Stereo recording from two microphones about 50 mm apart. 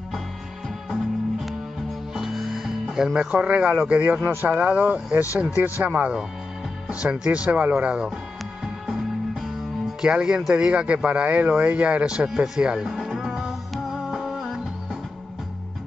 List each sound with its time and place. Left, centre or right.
0.8 s music: centre
3.3 s speech: right
5.9 s speech: right
8.8 s music: centre
10.0 s speech: centre
12.4 s music: centre